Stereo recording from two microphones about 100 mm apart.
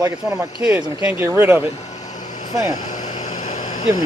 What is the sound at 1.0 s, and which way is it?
Speech, 20° right (ahead or behind).